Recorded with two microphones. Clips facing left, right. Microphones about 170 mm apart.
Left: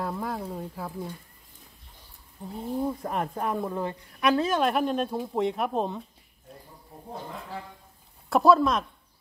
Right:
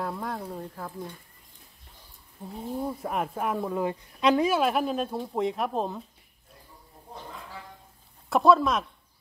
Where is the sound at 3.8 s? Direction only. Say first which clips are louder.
Right 4 dB; 15° right (ahead or behind).